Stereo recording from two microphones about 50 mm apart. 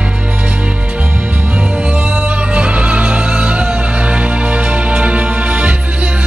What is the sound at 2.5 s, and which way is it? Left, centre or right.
Music, right.